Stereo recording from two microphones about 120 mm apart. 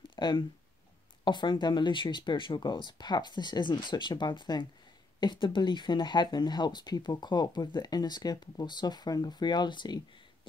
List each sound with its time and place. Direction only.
0.1 s speech: 40° left (ahead or behind)